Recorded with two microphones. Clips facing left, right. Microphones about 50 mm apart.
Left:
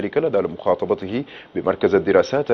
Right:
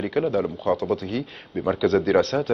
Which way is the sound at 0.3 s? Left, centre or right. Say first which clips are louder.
Left 4 dB; centre.